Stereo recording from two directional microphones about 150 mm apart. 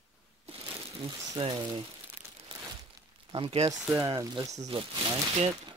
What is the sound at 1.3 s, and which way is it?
Speech, 30° right (ahead or behind).